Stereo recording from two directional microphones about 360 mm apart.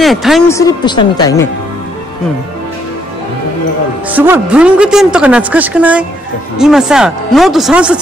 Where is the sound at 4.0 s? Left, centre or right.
Centre.